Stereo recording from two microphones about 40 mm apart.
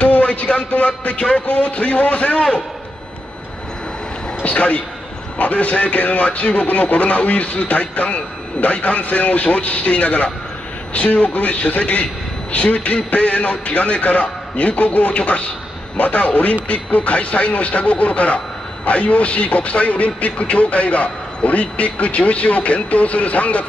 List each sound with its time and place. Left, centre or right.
0.0 s a sound: left
0.7 s a man's voice: left
4.4 s a man's voice: left